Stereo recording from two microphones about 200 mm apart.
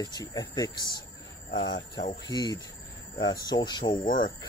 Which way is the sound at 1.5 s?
65° left (ahead or behind).